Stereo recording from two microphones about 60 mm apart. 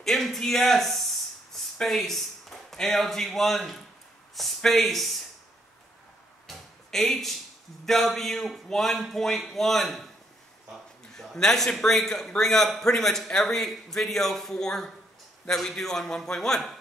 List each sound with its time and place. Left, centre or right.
0.0 s a man's voice: centre
6.4 s a sound: centre
7.8 s a man's voice: centre
11.3 s a man's voice: centre